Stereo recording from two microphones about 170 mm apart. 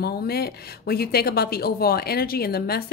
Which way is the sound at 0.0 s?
65° left (ahead or behind).